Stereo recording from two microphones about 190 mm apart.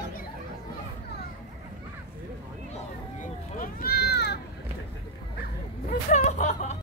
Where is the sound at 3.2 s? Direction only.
50° left (ahead or behind).